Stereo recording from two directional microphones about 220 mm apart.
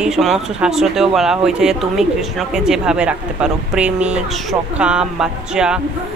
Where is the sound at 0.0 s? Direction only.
Centre (ahead or behind).